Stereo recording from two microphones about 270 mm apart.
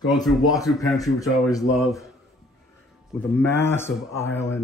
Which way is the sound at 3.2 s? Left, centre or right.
Centre.